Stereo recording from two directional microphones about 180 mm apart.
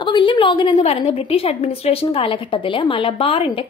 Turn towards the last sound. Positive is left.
turn(degrees=30)  # may be behind; listen again after turning